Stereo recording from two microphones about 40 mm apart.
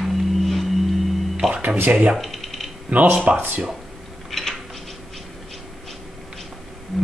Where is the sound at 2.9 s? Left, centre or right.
Right.